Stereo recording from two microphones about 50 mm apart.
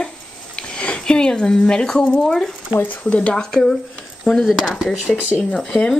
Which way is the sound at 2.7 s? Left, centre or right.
Left.